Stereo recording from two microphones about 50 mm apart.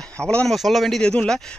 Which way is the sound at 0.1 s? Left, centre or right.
Left.